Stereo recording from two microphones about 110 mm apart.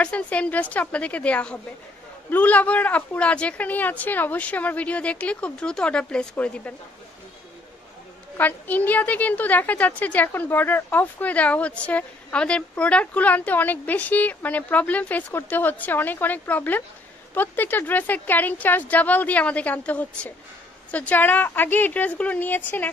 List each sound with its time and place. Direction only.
0.0 s a woman's voice: 10° left (ahead or behind)
8.4 s a woman's voice: 15° left (ahead or behind)